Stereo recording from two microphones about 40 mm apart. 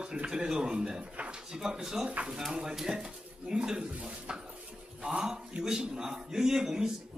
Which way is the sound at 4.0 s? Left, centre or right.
Right.